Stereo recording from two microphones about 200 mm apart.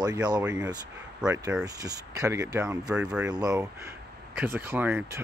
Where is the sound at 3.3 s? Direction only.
20° right (ahead or behind).